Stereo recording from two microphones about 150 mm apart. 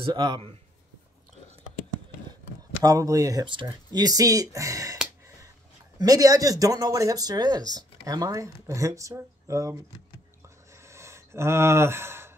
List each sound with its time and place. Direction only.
0.0 s speech: 30° right (ahead or behind)
2.8 s speech: 25° right (ahead or behind)
5.9 s speech: 25° right (ahead or behind)
10.7 s a sound: 20° right (ahead or behind)